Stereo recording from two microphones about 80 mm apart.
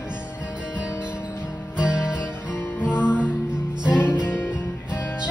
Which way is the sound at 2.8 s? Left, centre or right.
Left.